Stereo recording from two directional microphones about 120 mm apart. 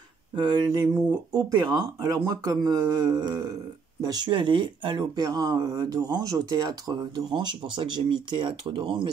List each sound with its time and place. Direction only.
0.4 s speech: 35° right (ahead or behind)